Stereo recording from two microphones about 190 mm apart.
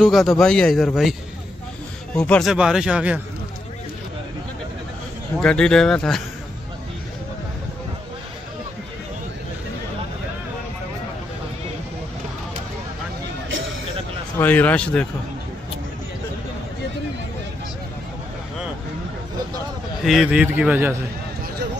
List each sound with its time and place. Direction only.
0.0 s speech: centre (ahead or behind)
2.1 s speech: 5° left (ahead or behind)
5.4 s speech: 5° left (ahead or behind)
14.4 s speech: 10° left (ahead or behind)
20.0 s speech: centre (ahead or behind)